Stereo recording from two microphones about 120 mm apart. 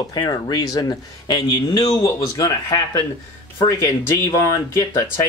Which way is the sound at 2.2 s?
25° left (ahead or behind).